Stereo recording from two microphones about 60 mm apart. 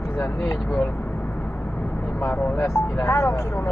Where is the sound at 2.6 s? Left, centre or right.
Left.